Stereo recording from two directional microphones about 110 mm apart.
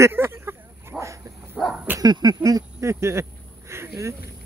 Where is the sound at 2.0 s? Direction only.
40° right (ahead or behind).